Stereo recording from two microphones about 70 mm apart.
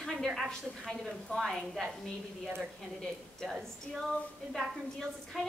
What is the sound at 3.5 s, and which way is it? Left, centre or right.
Speech, centre.